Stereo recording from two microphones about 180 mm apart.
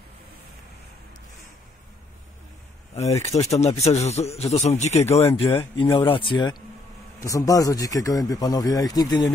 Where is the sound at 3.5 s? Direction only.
35° left (ahead or behind).